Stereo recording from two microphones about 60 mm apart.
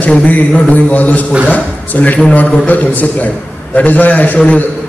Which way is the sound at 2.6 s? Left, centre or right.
Left.